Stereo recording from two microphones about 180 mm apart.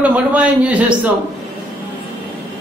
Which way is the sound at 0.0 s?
5° right (ahead or behind).